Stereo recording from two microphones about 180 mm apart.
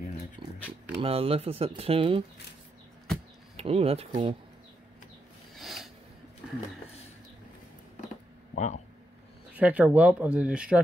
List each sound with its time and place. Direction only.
1.0 s speech: 30° right (ahead or behind)
3.5 s speech: 35° right (ahead or behind)
5.6 s a sound: centre (ahead or behind)
8.5 s speech: 40° left (ahead or behind)
9.5 s speech: 10° right (ahead or behind)